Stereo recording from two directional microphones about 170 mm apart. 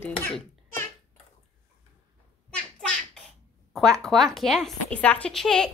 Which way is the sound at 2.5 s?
5° left (ahead or behind).